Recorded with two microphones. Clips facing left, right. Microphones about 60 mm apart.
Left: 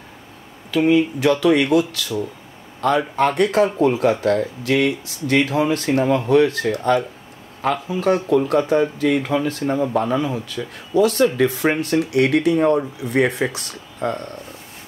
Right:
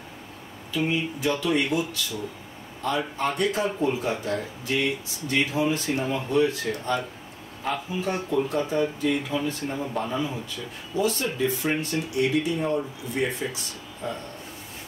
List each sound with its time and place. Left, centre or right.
0.7 s speech: left